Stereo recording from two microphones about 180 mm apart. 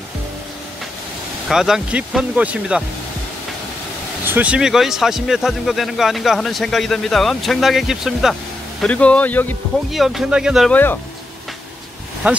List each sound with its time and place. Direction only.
1.5 s speech: centre (ahead or behind)
4.3 s a man's voice: 5° right (ahead or behind); by 9.6 s 10° left (ahead or behind)
9.8 s speech: centre (ahead or behind)
10.7 s a man's voice: 10° left (ahead or behind)
12.2 s speech: 5° right (ahead or behind)